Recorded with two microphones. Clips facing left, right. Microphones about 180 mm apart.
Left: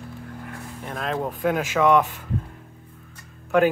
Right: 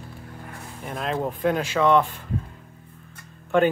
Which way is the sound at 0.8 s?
Centre (ahead or behind).